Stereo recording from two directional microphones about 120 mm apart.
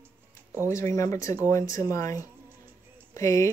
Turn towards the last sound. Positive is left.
turn(degrees=30)  # may be behind; listen again after turning